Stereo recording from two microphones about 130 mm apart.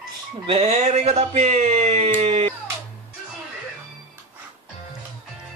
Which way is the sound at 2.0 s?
50° right (ahead or behind).